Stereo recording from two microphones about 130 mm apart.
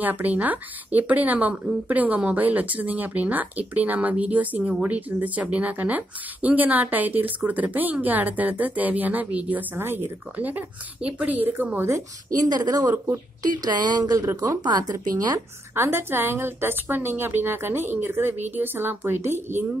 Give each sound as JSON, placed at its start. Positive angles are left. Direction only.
{"t": 0.0, "sound": "a woman's voice", "side_deg": -10}
{"t": 12.4, "sound": "a woman's voice", "side_deg": -30}
{"t": 13.5, "sound": "a woman's voice", "side_deg": -35}
{"t": 15.7, "sound": "a woman's voice", "side_deg": -20}